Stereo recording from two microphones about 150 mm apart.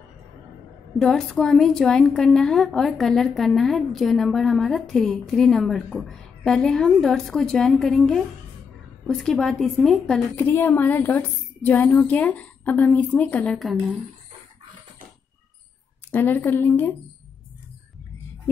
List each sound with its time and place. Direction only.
0.9 s a woman's voice: 5° left (ahead or behind)
10.3 s a woman's voice: 15° left (ahead or behind)
16.1 s a woman's voice: 15° left (ahead or behind)